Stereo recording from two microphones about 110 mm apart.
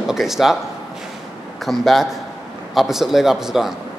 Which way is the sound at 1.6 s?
Centre (ahead or behind).